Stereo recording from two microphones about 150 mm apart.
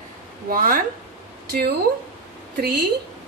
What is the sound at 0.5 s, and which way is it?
Speech, 70° right (ahead or behind).